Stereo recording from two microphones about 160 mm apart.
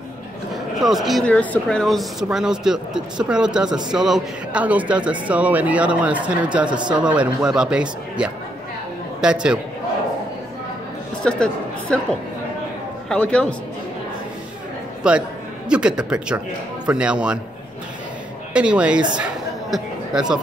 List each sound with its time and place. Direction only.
0.7 s speech: centre (ahead or behind)
11.2 s a woman's voice: 5° left (ahead or behind)
15.0 s speech: 5° right (ahead or behind)
18.5 s speech: 5° right (ahead or behind)
19.1 s chatter: 5° right (ahead or behind)